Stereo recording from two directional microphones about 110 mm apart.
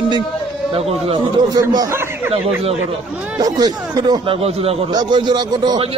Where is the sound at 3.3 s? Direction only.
35° right (ahead or behind).